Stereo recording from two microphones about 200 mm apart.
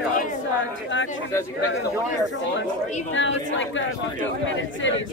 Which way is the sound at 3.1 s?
70° left (ahead or behind).